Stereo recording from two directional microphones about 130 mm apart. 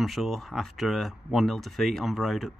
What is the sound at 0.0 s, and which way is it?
Speech, centre (ahead or behind).